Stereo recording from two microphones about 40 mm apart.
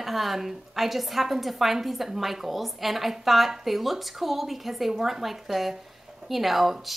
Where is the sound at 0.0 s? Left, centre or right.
Centre.